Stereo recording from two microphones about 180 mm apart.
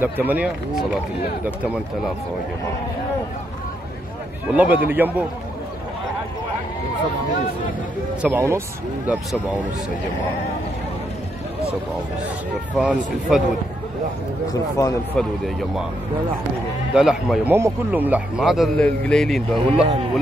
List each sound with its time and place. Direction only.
0.0 s speech: 10° right (ahead or behind)
4.5 s speech: 10° right (ahead or behind)
8.2 s speech: 10° right (ahead or behind)
12.7 s speech: 5° right (ahead or behind)
14.5 s speech: 20° left (ahead or behind)
15.1 s speech: centre (ahead or behind)
16.9 s speech: 5° right (ahead or behind)